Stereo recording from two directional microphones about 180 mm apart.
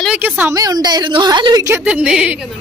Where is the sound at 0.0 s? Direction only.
10° right (ahead or behind).